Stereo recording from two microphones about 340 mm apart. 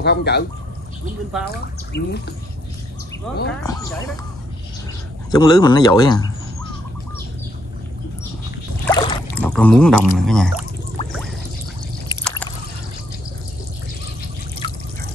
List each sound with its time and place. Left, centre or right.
0.0 s speech: left
1.5 s speech: left
3.3 s speech: centre
5.3 s speech: centre
8.8 s rowboat: centre
11.0 s pour: centre
12.1 s drip: centre
14.6 s drip: centre